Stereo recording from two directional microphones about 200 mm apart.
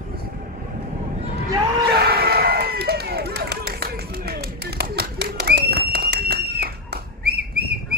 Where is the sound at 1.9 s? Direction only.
50° right (ahead or behind).